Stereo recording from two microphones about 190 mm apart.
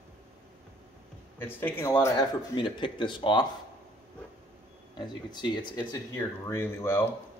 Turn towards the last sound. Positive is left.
turn(degrees=10)  # may be behind; listen again after turning